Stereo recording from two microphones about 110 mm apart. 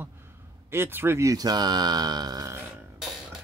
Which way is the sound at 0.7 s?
20° right (ahead or behind).